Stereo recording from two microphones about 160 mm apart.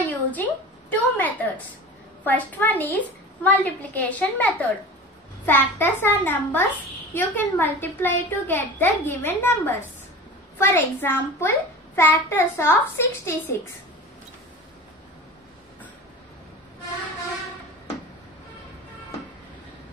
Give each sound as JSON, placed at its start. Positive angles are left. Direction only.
{"t": 0.0, "sound": "a woman's voice", "side_deg": 10}